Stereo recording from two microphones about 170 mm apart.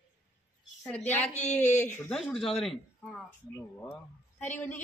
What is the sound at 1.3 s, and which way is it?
Speech, 40° left (ahead or behind).